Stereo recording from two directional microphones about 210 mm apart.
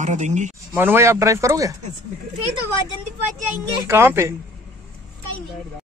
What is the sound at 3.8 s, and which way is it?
Speech, 10° right (ahead or behind).